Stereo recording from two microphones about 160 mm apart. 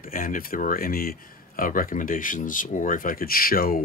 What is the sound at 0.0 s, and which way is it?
Speech, 60° left (ahead or behind).